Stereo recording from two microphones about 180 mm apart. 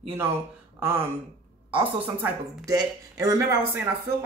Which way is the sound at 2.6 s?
20° right (ahead or behind).